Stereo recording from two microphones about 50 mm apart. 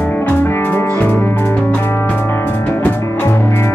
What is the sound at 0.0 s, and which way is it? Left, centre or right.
Music, left.